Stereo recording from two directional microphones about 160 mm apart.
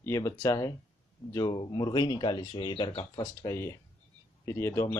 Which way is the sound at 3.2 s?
15° left (ahead or behind).